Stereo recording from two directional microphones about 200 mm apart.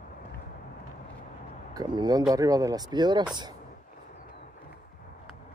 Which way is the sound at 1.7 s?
20° right (ahead or behind).